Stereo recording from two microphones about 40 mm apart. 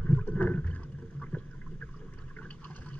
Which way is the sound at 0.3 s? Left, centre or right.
Left.